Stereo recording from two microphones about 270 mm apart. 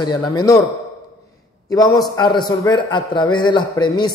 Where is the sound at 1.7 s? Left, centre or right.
Centre.